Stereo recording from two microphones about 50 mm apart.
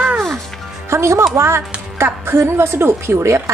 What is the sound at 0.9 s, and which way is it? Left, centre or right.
Speech, right.